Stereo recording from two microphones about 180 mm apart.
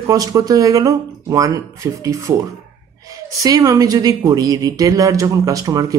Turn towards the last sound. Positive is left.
turn(degrees=-20)  # may be behind; listen again after turning